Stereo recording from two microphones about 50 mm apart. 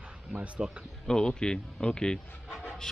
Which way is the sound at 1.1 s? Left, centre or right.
Centre.